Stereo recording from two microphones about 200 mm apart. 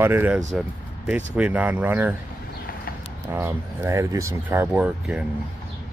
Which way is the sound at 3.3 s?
15° right (ahead or behind).